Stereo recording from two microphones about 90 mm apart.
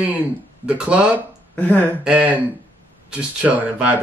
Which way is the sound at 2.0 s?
15° right (ahead or behind).